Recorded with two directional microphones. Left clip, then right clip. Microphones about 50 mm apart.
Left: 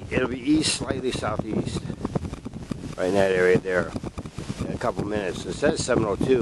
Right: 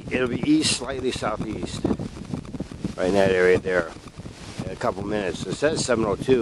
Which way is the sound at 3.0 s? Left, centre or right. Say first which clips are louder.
Right 1 dB; right.